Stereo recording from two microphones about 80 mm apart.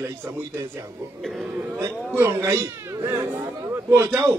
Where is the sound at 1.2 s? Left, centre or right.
Centre.